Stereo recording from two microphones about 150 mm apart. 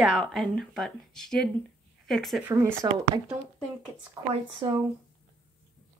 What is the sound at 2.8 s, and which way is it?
Speech, 25° right (ahead or behind).